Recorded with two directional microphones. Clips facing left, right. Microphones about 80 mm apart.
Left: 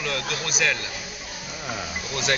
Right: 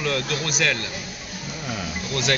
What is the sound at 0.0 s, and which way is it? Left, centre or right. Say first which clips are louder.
Speech: right 3 dB; centre.